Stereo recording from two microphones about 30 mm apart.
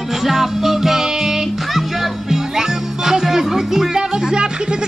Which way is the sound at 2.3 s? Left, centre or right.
Centre.